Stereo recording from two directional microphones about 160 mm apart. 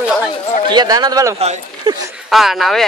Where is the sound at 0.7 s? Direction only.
25° right (ahead or behind).